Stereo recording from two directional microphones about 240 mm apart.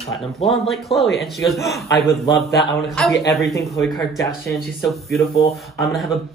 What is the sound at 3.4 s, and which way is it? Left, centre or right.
Speech, centre.